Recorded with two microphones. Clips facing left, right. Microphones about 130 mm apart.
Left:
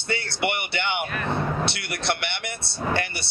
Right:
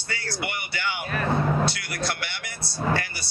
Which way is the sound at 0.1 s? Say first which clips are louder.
Left 5 dB; 25° left (ahead or behind).